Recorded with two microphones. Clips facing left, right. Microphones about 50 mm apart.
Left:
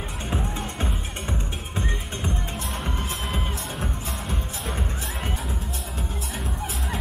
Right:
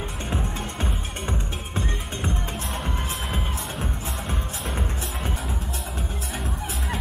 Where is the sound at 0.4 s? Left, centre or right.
Centre.